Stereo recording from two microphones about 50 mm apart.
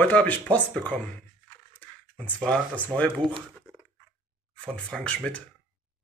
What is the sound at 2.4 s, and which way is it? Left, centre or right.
Speech, left.